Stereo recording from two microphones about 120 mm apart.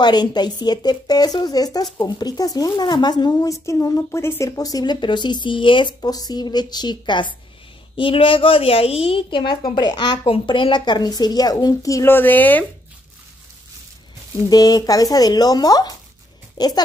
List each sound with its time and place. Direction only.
0.0 s a woman's voice: 35° left (ahead or behind)
10.2 s speech: 50° left (ahead or behind); by 12.6 s 15° left (ahead or behind)
14.5 s speech: 35° left (ahead or behind)